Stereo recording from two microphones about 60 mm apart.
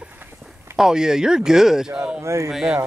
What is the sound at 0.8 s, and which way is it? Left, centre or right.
Speech, centre.